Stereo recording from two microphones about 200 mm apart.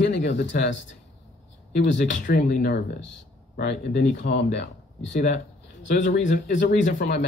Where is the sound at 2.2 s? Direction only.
40° left (ahead or behind); by 5.1 s 60° left (ahead or behind).